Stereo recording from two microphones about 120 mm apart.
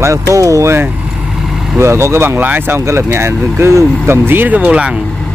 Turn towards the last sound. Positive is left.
turn(degrees=-10)  # may be behind; listen again after turning